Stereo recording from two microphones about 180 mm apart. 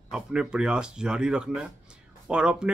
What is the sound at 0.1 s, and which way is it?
A man's voice, 5° right (ahead or behind).